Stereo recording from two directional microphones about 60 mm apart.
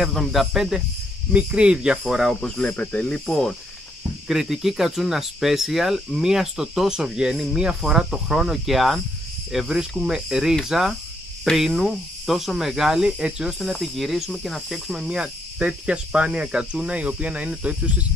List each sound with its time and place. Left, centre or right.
0.0 s speech: centre
0.6 s speech: centre
1.3 s speech: centre
2.4 s speech: centre
3.3 s speech: centre
4.3 s speech: centre
13.6 s speech: centre
14.9 s speech: centre